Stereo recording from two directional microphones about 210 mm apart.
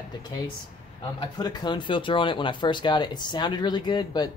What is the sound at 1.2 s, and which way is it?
Speech, 20° left (ahead or behind).